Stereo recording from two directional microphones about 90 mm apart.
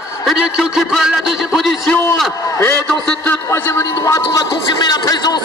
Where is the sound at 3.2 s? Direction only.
25° left (ahead or behind).